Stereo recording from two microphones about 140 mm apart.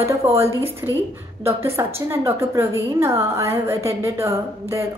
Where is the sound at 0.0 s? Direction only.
20° right (ahead or behind).